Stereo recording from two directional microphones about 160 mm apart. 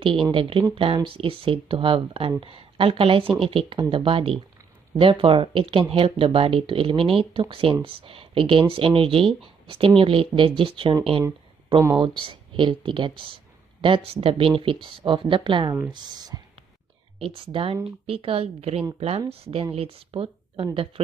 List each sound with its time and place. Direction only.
0.3 s speech: 35° right (ahead or behind)
12.2 s speech: 30° right (ahead or behind)